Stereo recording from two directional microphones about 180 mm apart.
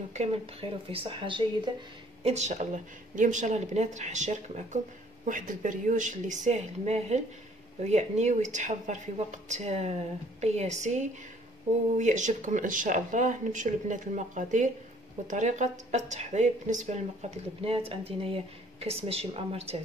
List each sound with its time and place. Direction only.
0.1 s speech: 35° right (ahead or behind)
2.2 s speech: 40° right (ahead or behind)